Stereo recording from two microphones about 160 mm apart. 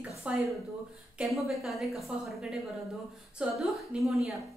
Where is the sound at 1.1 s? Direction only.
Centre (ahead or behind).